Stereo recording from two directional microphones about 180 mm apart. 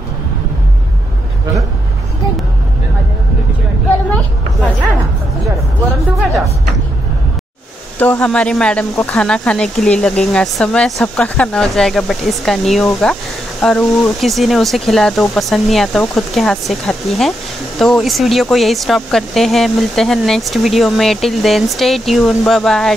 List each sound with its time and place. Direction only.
8.0 s speech: 5° left (ahead or behind)